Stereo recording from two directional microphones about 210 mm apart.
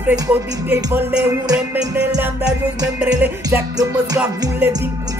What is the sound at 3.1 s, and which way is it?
Music, 15° right (ahead or behind).